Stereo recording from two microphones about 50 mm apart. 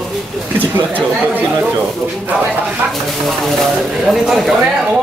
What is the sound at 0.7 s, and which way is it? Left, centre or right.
Speech, right.